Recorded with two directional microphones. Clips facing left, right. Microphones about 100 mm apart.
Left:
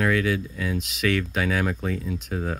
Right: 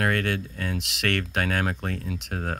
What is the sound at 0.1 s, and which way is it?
Speech, 60° right (ahead or behind).